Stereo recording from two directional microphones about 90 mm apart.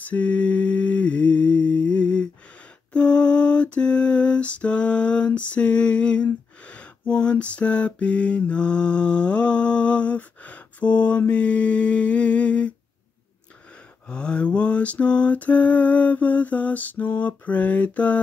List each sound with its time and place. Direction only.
0.0 s mantra: 15° left (ahead or behind)
2.9 s lullaby: 10° left (ahead or behind)
14.0 s mantra: 10° left (ahead or behind)